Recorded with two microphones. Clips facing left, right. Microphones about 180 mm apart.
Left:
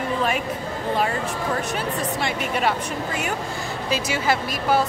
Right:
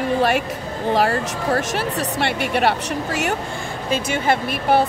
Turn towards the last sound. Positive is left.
turn(degrees=-60)  # may be behind; listen again after turning